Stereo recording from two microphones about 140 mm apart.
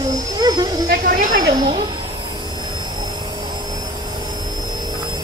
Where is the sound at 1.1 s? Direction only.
70° right (ahead or behind).